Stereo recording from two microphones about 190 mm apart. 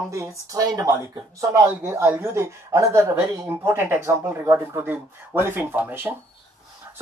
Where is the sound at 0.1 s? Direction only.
15° right (ahead or behind).